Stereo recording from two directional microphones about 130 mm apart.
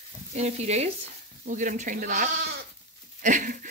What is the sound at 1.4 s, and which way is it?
Speech, 80° right.